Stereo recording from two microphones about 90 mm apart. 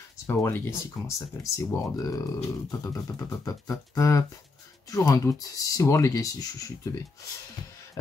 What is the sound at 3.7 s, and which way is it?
Speech, 35° left (ahead or behind).